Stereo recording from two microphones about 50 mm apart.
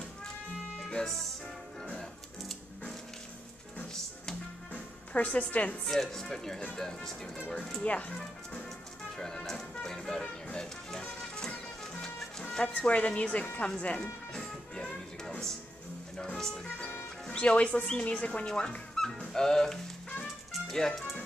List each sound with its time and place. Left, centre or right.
0.7 s music: centre
4.7 s music: left
5.9 s speech: centre
7.8 s a woman's voice: left
9.1 s music: centre
12.7 s a woman's voice: left
14.3 s music: centre
17.3 s a woman's voice: left